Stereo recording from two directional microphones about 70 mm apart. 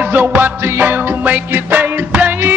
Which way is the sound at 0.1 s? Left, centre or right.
Right.